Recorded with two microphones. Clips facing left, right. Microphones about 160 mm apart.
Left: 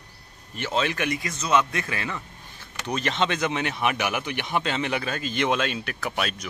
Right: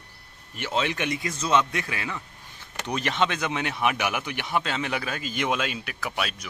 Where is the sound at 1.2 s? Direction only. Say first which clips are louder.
Even; 30° right (ahead or behind).